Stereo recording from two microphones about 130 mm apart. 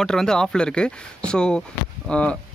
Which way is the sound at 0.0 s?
5° left (ahead or behind).